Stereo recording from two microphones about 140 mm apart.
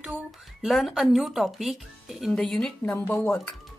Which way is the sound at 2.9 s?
15° left (ahead or behind).